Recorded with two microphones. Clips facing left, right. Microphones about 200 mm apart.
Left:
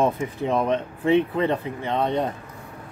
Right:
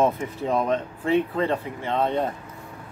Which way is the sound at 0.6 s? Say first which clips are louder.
Left 2 dB; 20° left (ahead or behind).